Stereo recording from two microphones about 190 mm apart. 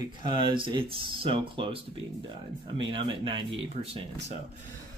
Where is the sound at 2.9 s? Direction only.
25° right (ahead or behind).